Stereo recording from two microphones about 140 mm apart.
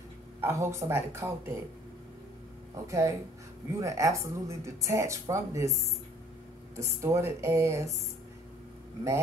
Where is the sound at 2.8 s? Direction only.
20° right (ahead or behind).